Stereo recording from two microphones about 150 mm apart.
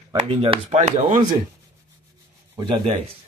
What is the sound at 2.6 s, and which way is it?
Speech, 35° right (ahead or behind).